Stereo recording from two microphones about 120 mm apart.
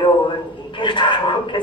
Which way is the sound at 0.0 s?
45° left (ahead or behind).